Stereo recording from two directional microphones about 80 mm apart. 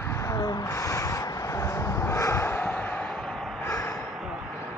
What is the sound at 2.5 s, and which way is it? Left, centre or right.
Basketball bounce, left.